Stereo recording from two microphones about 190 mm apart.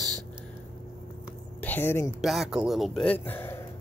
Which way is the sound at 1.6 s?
10° left (ahead or behind).